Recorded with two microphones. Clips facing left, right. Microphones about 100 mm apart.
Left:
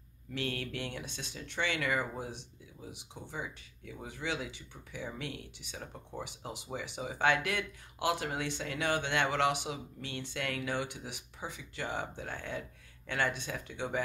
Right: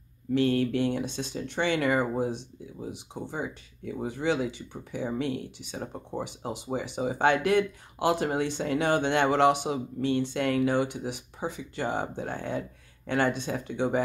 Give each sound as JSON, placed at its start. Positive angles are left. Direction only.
{"t": 0.3, "sound": "speech", "side_deg": -35}